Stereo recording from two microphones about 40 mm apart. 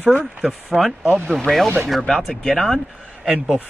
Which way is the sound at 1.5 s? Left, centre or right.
Left.